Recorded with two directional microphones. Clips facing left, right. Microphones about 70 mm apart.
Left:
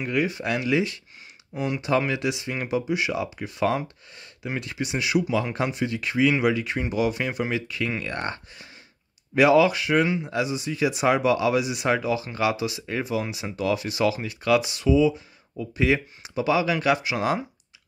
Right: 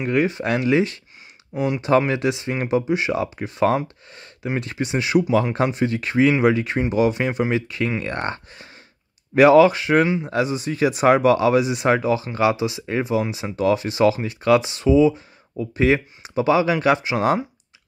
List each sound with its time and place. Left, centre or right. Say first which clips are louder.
0.0 s speech: right 5 dB; right
10.2 s speech: right 4 dB; right